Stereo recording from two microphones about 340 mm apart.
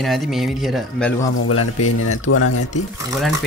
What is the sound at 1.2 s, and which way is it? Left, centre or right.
Speech, left.